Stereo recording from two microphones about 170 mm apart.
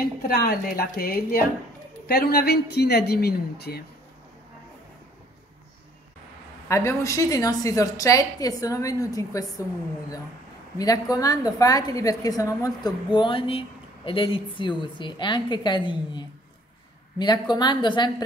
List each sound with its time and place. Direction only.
0.0 s a woman's voice: 65° left (ahead or behind)
6.7 s a woman's voice: 15° left (ahead or behind)
10.8 s a woman's voice: 20° left (ahead or behind)